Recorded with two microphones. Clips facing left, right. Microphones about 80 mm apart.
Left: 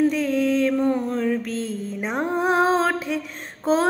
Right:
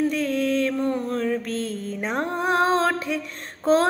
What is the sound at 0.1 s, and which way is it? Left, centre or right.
Mantra, left.